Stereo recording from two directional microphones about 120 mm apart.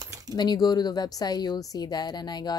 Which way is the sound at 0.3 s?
35° left (ahead or behind).